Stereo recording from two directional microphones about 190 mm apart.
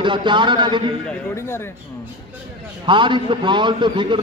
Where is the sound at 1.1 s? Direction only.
15° left (ahead or behind).